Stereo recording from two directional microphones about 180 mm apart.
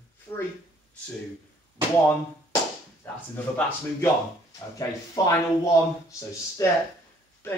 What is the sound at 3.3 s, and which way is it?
Music, 10° left (ahead or behind).